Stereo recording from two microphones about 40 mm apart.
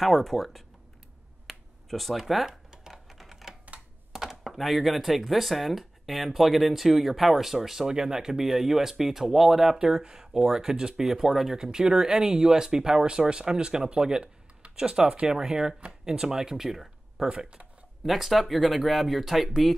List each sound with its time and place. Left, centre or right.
0.0 s speech: centre
1.5 s finger snapping: centre
2.4 s a sound: centre
2.9 s typing: centre
4.1 s speech: centre
9.8 s speech: centre
16.1 s speech: centre
17.3 s speech: right
18.0 s speech: centre